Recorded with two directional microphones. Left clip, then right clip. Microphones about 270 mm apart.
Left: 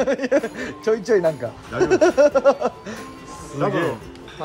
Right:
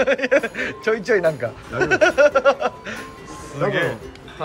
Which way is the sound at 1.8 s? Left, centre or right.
Left.